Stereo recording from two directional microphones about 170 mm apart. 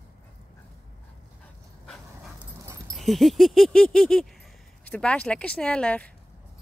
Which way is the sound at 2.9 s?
Centre (ahead or behind).